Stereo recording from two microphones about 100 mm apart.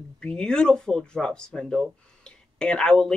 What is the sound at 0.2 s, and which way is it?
Speech, 10° left (ahead or behind).